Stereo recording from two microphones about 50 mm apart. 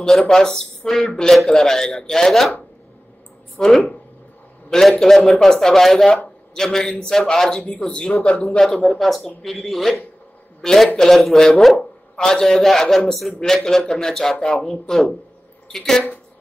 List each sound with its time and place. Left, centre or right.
0.0 s a man's voice: centre
3.5 s a man's voice: centre
8.5 s a man's voice: centre
8.8 s a man's voice: centre